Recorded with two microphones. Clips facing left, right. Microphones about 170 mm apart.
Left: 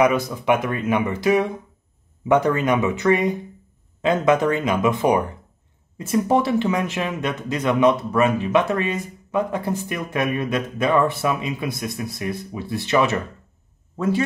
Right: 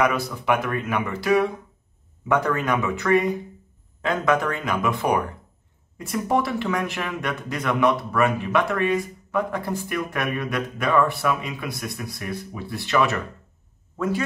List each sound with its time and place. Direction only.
0.0 s speech: 20° left (ahead or behind)